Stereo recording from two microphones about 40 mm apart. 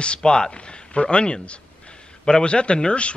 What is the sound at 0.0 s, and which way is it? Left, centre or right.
A man's voice, left.